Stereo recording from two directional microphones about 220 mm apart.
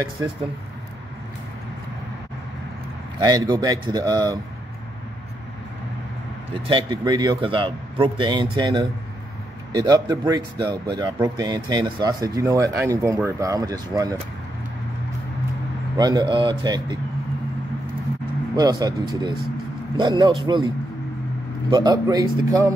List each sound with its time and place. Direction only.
3.2 s speech: 15° right (ahead or behind)
6.7 s a man's voice: 20° right (ahead or behind)
16.0 s a man's voice: 20° right (ahead or behind)
18.6 s a man's voice: 15° right (ahead or behind)